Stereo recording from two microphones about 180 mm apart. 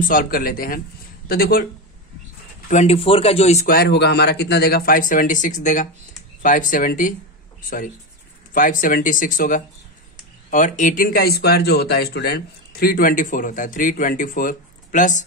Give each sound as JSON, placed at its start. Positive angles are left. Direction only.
{"t": 0.0, "sound": "speech", "side_deg": 50}
{"t": 2.7, "sound": "speech", "side_deg": 35}
{"t": 3.6, "sound": "speech", "side_deg": 60}
{"t": 8.5, "sound": "speech", "side_deg": 50}